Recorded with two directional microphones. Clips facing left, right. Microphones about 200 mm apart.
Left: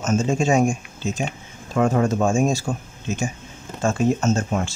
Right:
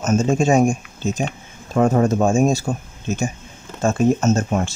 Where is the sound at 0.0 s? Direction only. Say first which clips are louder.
Right 3 dB; 40° right (ahead or behind).